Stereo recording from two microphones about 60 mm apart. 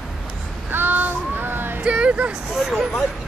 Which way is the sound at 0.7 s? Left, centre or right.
Right.